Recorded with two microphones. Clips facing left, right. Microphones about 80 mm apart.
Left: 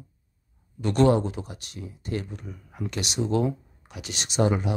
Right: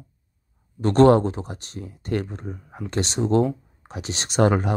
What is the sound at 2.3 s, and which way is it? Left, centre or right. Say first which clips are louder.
Speech: right 5 dB; right.